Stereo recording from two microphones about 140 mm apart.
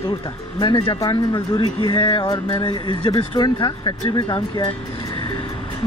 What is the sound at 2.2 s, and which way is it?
Speech, 25° left (ahead or behind).